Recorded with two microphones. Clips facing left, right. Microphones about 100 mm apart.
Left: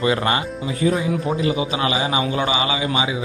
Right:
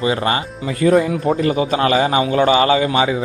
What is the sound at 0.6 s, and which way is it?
Speech, 65° right (ahead or behind).